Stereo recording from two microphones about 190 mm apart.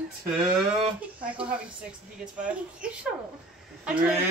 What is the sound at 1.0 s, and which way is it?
Speech, 5° right (ahead or behind).